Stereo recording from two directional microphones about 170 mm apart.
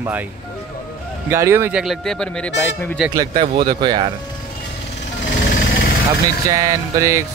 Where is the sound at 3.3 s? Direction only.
35° right (ahead or behind).